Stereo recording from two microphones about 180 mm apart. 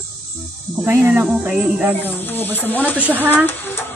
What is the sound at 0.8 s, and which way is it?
Speech, 10° right (ahead or behind).